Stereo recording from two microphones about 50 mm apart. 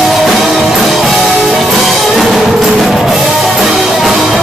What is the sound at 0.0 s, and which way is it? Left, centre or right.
Music, centre.